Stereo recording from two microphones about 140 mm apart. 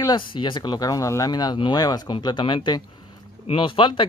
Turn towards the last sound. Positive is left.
turn(degrees=35)  # may be behind; listen again after turning